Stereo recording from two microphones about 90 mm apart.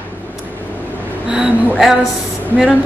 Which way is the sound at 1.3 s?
10° right (ahead or behind).